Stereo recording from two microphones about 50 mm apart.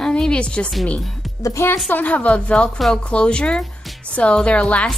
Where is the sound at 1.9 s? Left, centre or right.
Left.